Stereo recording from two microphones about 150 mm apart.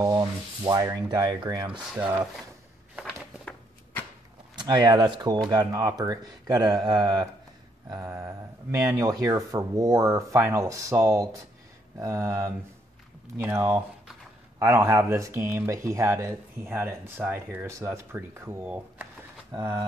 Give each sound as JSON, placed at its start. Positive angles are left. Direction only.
{"t": 0.0, "sound": "rub", "side_deg": -25}
{"t": 0.8, "sound": "speech", "side_deg": -25}
{"t": 1.7, "sound": "speech", "side_deg": -5}
{"t": 4.6, "sound": "speech", "side_deg": -30}
{"t": 19.5, "sound": "speech", "side_deg": -30}